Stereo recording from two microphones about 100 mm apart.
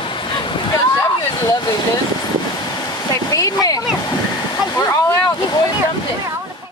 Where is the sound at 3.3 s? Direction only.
35° left (ahead or behind).